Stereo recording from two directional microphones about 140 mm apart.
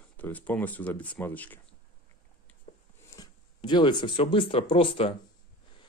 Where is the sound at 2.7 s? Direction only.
50° left (ahead or behind).